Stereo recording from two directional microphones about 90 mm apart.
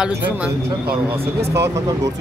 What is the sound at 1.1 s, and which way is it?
Speech, 30° right (ahead or behind).